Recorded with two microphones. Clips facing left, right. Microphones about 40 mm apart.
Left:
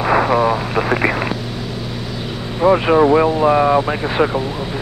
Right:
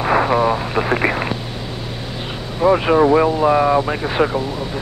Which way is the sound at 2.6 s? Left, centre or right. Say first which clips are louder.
Left 1 dB; centre.